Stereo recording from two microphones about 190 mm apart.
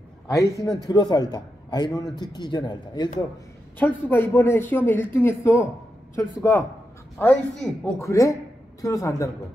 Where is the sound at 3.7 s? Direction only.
10° left (ahead or behind).